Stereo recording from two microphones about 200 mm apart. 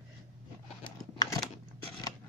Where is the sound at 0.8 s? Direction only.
20° left (ahead or behind).